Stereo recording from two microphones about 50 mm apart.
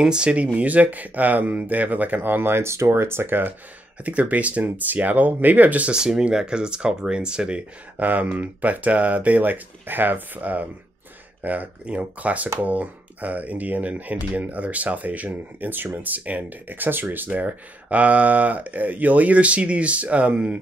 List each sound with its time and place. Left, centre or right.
0.0 s speech: centre; by 2.9 s right
2.9 s speech: right
4.0 s speech: right
5.9 s speech: centre
8.0 s speech: right